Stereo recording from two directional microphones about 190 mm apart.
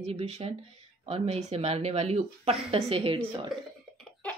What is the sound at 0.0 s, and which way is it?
Speech, 35° right (ahead or behind).